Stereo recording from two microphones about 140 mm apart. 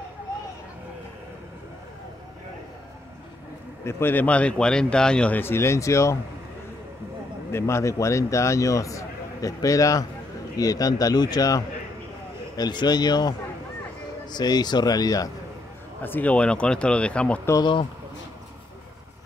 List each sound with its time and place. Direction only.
3.8 s speech: 15° left (ahead or behind)
7.5 s a man's voice: 20° left (ahead or behind)
14.3 s a man's voice: 30° left (ahead or behind)
16.0 s speech: 10° left (ahead or behind)
17.5 s a man's voice: 30° left (ahead or behind)